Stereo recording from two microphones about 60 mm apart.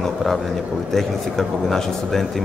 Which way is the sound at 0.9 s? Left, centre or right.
Centre.